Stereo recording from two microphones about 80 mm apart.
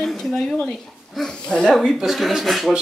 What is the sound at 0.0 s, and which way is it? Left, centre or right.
Speech, centre.